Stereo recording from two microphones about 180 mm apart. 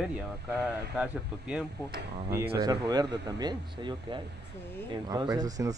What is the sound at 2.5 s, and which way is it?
Speech, 20° right (ahead or behind).